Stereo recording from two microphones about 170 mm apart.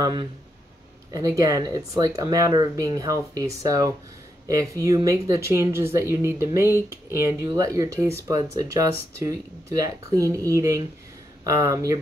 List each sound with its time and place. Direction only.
0.0 s speech: 25° right (ahead or behind)